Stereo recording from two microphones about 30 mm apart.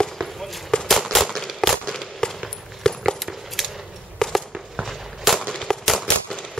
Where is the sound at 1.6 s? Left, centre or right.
Centre.